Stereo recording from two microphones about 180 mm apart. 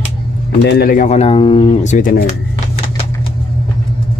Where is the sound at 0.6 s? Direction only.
60° left (ahead or behind).